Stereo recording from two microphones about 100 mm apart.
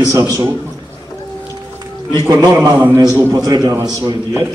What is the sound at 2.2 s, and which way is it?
A man's voice, 35° right (ahead or behind).